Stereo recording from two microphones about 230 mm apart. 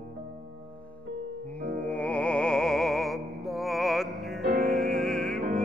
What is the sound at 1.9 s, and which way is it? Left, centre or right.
Music, centre.